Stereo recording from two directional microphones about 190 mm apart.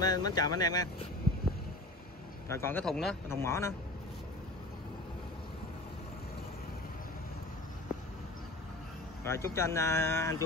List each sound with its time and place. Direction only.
0.0 s speech: 20° left (ahead or behind)
2.4 s speech: 15° left (ahead or behind)
3.3 s speech: 15° left (ahead or behind)
9.2 s speech: 15° left (ahead or behind)